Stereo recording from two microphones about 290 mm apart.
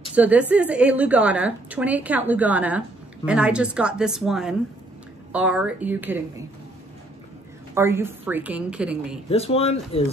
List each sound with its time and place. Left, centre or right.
0.1 s a woman's voice: centre
7.7 s a woman's voice: centre
9.3 s speech: left